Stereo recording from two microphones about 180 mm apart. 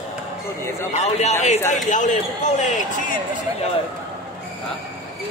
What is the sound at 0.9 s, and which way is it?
A man's voice, 40° left (ahead or behind).